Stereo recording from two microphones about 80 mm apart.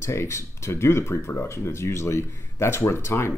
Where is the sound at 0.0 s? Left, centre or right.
Left.